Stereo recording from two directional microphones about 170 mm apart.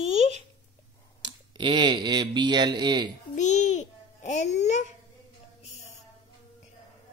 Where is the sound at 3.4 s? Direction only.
45° left (ahead or behind).